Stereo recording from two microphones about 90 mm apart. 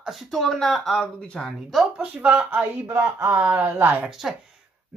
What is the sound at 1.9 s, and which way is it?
A woman's voice, 15° right (ahead or behind).